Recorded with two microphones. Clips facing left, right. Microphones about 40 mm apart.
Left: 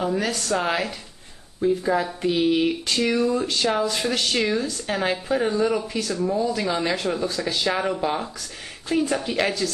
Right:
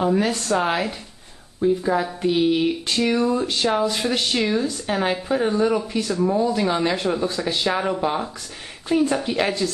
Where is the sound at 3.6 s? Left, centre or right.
Centre.